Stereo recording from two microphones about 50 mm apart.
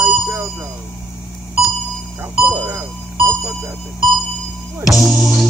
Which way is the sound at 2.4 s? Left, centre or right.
Right.